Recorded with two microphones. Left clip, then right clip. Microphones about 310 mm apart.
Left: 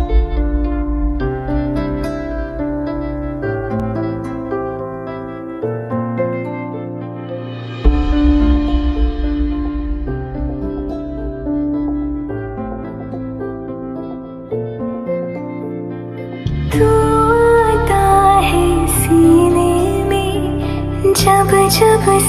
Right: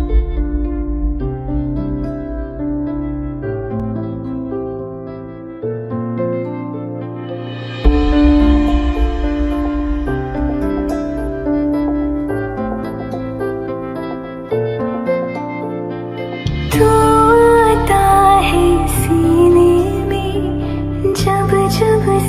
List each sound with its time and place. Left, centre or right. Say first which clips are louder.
1.2 s music: left 4 dB; left
5.9 s music: left 1 dB; centre
7.8 s music: right 3 dB; centre; by 11.0 s right
11.4 s music: right 2 dB; right
14.5 s music: right 4 dB; right
16.7 s music: right 2 dB; centre